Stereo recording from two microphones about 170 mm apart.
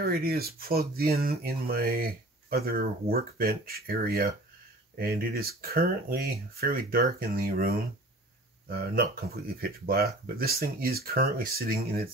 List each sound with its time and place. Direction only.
0.0 s speech: 60° right (ahead or behind)